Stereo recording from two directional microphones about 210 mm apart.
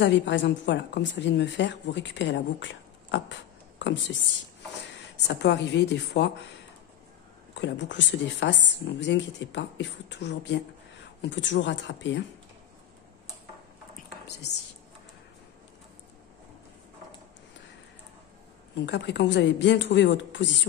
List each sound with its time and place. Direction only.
0.0 s a woman's voice: 60° left (ahead or behind)
7.5 s a woman's voice: 60° left (ahead or behind)
18.9 s a woman's voice: 55° left (ahead or behind)